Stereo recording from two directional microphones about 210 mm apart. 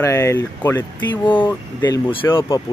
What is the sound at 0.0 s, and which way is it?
Speech, 15° left (ahead or behind).